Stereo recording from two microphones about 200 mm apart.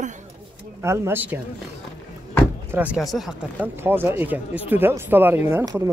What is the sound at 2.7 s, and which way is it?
Speech, 5° right (ahead or behind).